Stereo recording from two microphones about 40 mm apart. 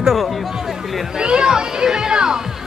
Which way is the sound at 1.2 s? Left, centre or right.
Centre.